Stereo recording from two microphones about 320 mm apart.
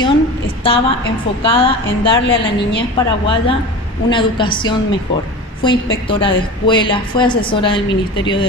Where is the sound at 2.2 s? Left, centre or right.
Left.